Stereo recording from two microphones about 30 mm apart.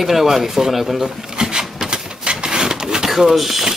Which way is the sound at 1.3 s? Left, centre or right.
Right.